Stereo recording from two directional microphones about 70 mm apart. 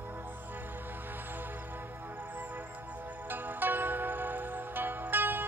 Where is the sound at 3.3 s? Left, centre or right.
Right.